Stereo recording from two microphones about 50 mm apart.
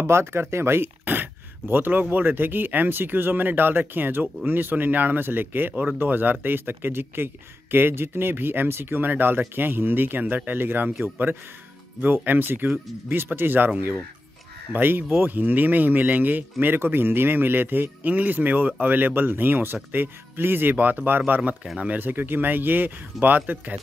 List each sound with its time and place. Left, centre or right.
0.0 s speech: right
1.0 s speech: right
14.7 s speech: right
16.6 s speech: right
20.7 s speech: right